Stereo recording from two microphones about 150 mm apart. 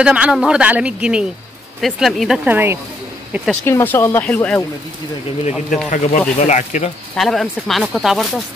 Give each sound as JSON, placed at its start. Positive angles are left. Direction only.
{"t": 0.0, "sound": "speech", "side_deg": -5}
{"t": 2.4, "sound": "speech", "side_deg": -15}
{"t": 3.6, "sound": "speech", "side_deg": 15}
{"t": 5.9, "sound": "speech", "side_deg": 50}
{"t": 7.2, "sound": "speech", "side_deg": 0}